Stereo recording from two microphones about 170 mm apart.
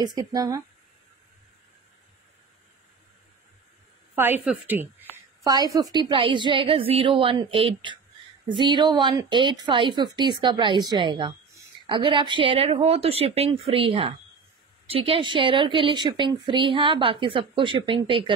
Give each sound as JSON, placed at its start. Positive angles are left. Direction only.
{"t": 0.0, "sound": "a woman's voice", "side_deg": -20}
{"t": 4.1, "sound": "a woman's voice", "side_deg": -10}
{"t": 5.1, "sound": "a woman's voice", "side_deg": -20}